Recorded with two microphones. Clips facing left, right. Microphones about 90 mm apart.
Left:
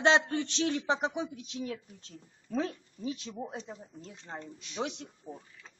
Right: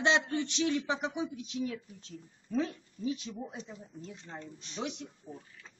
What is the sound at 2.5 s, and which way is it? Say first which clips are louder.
Speech: even; 50° left (ahead or behind).